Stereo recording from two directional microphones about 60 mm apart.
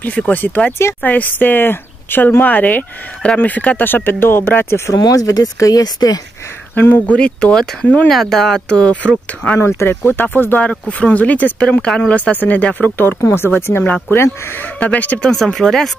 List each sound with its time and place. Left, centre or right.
0.3 s speech: left
4.9 s speech: left
6.7 s speech: left
7.1 s speech: centre
8.1 s speech: centre
9.6 s speech: left
9.8 s speech: left
10.6 s speech: left
14.8 s speech: left
15.3 s speech: centre